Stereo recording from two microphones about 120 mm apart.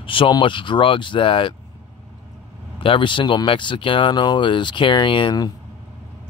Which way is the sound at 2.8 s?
45° left (ahead or behind).